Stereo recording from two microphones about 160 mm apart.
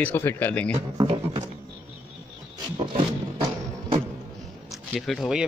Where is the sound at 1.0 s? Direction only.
35° right (ahead or behind).